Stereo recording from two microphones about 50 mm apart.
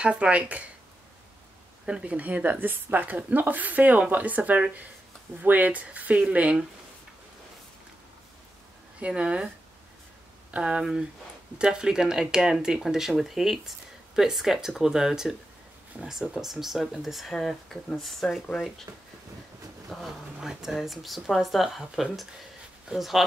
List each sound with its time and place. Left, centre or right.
0.0 s speech: right
2.0 s a woman's voice: right
9.0 s speech: right
10.5 s speech: right; by 18.4 s centre
19.9 s speech: centre